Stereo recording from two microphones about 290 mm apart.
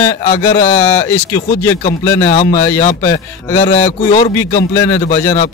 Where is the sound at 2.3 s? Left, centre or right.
Left.